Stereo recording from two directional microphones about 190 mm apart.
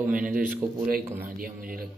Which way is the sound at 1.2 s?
50° right (ahead or behind).